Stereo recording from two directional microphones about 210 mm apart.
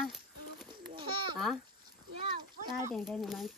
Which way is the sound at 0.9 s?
20° right (ahead or behind).